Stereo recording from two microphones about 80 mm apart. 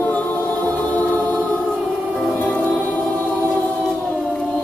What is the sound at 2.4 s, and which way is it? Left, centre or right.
Music, centre.